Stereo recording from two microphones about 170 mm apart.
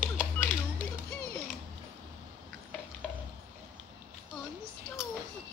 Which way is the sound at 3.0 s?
5° left (ahead or behind).